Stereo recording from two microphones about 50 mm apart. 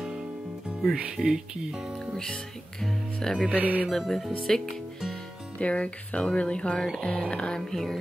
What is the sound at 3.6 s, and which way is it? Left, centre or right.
Music, right.